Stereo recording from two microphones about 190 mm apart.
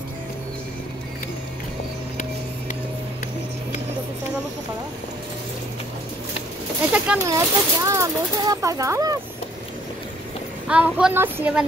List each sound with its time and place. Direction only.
6.9 s speech: 5° right (ahead or behind)
7.2 s speech: 20° right (ahead or behind)
10.7 s speech: 5° right (ahead or behind)